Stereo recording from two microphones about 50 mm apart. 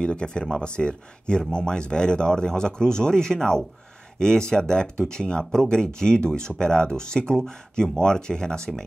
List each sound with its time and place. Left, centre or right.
0.0 s speech: centre